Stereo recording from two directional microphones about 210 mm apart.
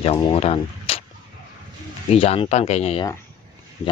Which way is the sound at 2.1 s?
30° left (ahead or behind).